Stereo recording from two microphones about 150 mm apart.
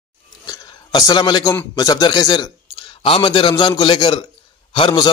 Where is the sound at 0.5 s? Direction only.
25° left (ahead or behind).